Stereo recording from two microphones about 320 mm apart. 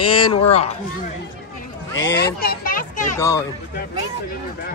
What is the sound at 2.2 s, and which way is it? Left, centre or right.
Children playing, left.